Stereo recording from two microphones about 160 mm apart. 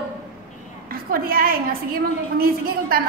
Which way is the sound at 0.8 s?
65° right (ahead or behind).